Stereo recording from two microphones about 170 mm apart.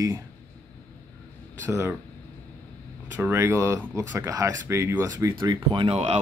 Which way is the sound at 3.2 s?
15° right (ahead or behind).